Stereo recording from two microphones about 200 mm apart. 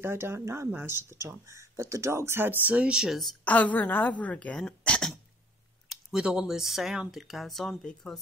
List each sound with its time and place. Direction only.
0.0 s speech: 10° right (ahead or behind); by 5.1 s 5° left (ahead or behind)
6.1 s speech: 5° right (ahead or behind)